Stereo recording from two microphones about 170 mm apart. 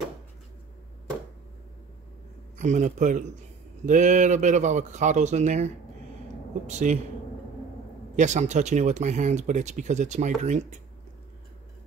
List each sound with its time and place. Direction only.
2.5 s speech: 45° right (ahead or behind)
6.7 s speech: 45° right (ahead or behind)
8.2 s speech: 45° right (ahead or behind)